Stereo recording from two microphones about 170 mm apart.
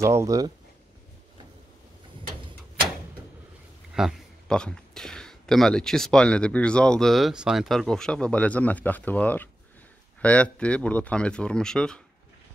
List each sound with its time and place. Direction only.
0.0 s speech: 15° right (ahead or behind)
3.9 s speech: centre (ahead or behind)